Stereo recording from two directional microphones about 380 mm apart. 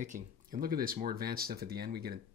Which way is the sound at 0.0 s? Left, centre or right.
Right.